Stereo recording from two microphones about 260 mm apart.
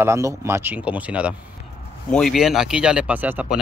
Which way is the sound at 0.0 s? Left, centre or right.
Centre.